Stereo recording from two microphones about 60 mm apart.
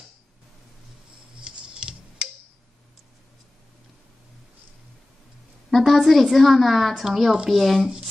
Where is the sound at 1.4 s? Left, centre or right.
Centre.